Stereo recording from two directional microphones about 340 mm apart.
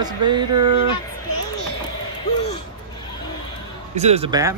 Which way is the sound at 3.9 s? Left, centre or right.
Centre.